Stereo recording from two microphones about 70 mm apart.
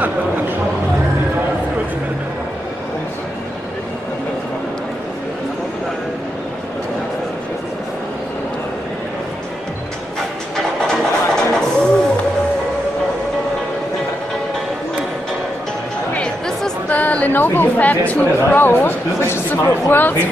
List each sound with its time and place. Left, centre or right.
10.5 s music: centre
16.2 s chatter: centre
16.9 s chatter: left